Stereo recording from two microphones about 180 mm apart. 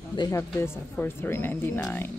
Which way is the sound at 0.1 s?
20° left (ahead or behind).